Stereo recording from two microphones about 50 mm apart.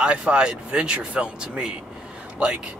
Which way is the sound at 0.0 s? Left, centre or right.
Right.